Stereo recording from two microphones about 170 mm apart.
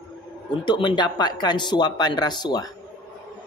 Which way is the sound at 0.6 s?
30° left (ahead or behind).